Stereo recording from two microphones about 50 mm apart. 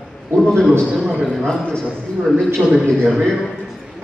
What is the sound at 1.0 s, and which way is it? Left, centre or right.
Speech, centre.